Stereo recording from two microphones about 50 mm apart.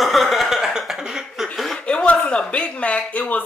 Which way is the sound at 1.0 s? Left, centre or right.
Centre.